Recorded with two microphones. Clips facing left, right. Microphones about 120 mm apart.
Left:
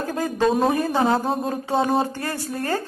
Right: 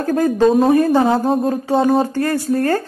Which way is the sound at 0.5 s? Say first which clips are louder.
Right 5 dB; centre (ahead or behind).